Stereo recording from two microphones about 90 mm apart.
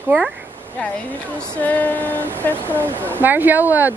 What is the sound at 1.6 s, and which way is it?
Female singing, 20° left (ahead or behind).